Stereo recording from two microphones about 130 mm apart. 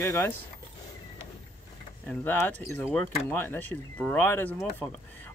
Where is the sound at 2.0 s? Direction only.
10° left (ahead or behind).